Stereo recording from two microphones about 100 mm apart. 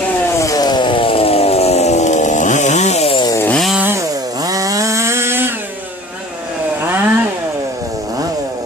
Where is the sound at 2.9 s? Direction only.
75° left (ahead or behind).